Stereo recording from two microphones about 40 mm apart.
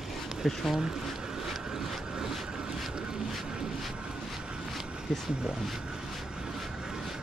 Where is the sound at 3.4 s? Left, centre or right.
Right.